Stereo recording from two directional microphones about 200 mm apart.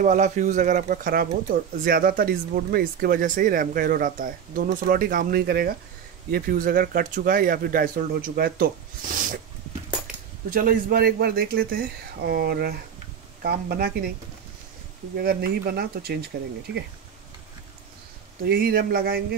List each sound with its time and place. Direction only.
0.0 s speech: 40° right (ahead or behind)
9.1 s dog: 40° right (ahead or behind)
10.5 s speech: 45° right (ahead or behind)
15.1 s speech: 50° right (ahead or behind)
18.4 s speech: 50° right (ahead or behind)